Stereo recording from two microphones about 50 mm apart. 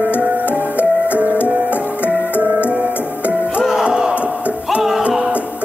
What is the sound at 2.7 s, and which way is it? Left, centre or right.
Music, right.